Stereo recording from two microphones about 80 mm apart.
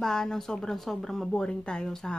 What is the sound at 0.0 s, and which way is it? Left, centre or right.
A woman's voice, centre.